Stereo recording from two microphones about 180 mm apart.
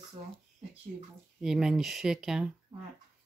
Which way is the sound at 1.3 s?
5° right (ahead or behind).